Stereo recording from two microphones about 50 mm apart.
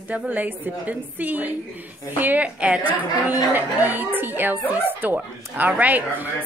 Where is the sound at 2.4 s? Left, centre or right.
Right.